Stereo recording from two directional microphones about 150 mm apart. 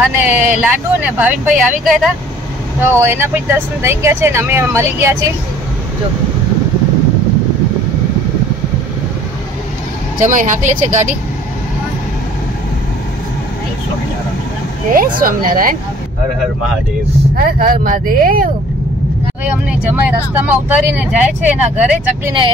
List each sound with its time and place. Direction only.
0.2 s speech: 10° right (ahead or behind)
10.1 s a woman's voice: 60° right (ahead or behind)
14.9 s speech: 65° right (ahead or behind)
17.4 s speech: 70° right (ahead or behind)
19.4 s speech: 10° right (ahead or behind)